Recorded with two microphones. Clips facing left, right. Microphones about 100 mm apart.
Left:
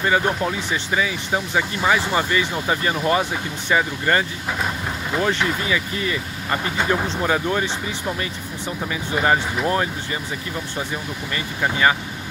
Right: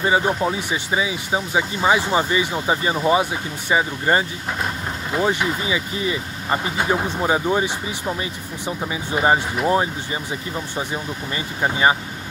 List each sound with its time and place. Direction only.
0.2 s speech: 10° right (ahead or behind)
11.3 s speech: 20° right (ahead or behind)